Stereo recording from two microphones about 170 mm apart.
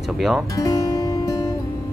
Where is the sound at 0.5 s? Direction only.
20° left (ahead or behind).